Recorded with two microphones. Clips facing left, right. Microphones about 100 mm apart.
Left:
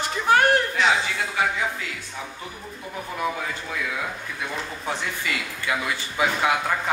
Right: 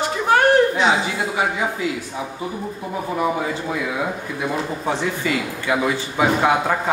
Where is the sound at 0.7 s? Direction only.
25° right (ahead or behind).